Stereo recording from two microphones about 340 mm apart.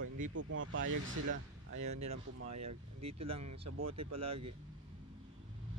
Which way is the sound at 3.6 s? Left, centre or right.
Right.